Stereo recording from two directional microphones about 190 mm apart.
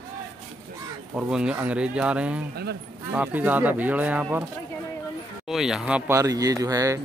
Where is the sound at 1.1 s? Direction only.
5° right (ahead or behind).